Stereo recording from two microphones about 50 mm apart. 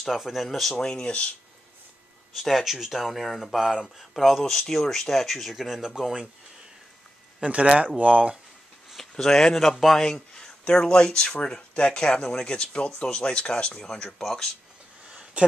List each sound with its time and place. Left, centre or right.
0.0 s speech: centre
0.7 s speech: centre
2.3 s speech: centre
3.5 s speech: centre
4.1 s speech: centre
7.4 s speech: right
9.1 s speech: centre
10.6 s speech: centre
15.0 s a sound: right